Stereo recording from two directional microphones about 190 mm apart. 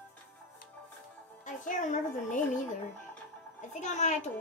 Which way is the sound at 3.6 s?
40° left (ahead or behind).